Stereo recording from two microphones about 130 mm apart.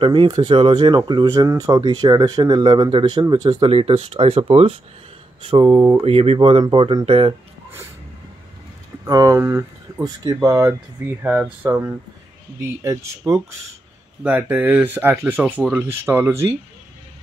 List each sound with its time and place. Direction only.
0.0 s speech: 40° right (ahead or behind)
3.6 s speech: 45° right (ahead or behind)
5.8 s speech: 25° right (ahead or behind)
6.0 s speech: 50° right (ahead or behind)
9.0 s speech: 25° right (ahead or behind)
10.0 s speech: 30° right (ahead or behind)
14.2 s speech: 10° right (ahead or behind)